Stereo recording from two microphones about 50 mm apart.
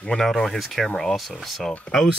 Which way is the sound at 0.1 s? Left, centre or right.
Centre.